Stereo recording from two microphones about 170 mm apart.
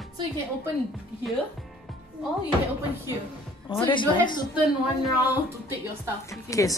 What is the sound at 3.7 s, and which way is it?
Speech, 30° left (ahead or behind).